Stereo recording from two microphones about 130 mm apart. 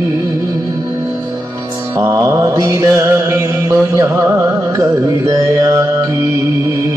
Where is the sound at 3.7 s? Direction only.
20° right (ahead or behind).